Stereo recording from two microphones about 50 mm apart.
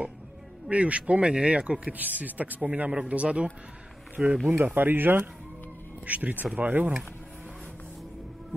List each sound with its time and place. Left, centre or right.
0.7 s speech: right
4.5 s speech: right
6.0 s speech: right